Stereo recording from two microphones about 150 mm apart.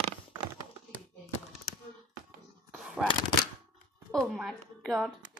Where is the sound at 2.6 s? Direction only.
Centre (ahead or behind).